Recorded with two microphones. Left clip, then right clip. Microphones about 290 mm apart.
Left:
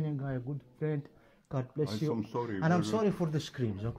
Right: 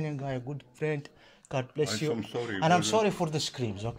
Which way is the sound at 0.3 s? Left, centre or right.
Right.